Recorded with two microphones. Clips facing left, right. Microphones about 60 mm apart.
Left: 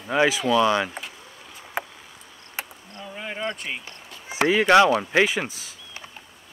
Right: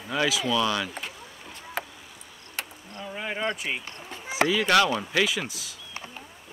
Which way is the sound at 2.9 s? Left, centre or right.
Centre.